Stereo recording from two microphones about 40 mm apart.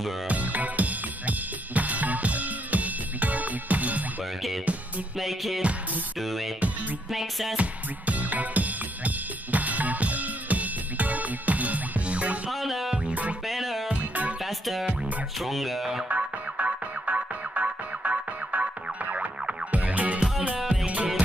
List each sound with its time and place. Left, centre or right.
0.3 s drum kit: right
5.2 s speech: centre
6.2 s music: centre
7.5 s music: right
12.4 s music: centre
15.4 s speech: centre
16.1 s music: right